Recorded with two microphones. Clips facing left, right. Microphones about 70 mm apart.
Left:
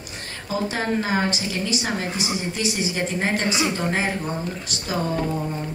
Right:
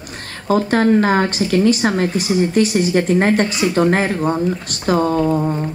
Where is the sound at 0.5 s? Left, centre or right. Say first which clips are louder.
Right 10 dB; right.